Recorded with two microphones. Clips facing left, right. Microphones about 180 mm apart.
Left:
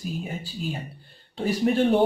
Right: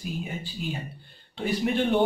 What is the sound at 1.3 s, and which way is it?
Speech, 35° left (ahead or behind).